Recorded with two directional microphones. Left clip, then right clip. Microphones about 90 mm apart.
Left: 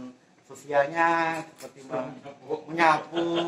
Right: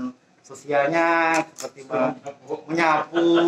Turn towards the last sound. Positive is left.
turn(degrees=-35)  # may be behind; listen again after turning